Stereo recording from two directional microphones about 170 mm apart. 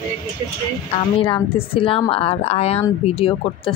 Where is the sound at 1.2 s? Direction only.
30° left (ahead or behind).